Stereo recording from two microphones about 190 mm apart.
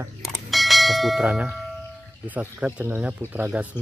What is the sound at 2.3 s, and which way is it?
Speech, 10° right (ahead or behind).